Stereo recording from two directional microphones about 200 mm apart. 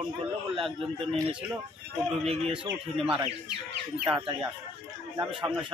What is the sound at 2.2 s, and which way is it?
Speech, 30° right (ahead or behind).